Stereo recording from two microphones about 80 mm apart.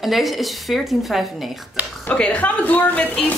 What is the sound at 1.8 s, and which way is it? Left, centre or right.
Speech, right.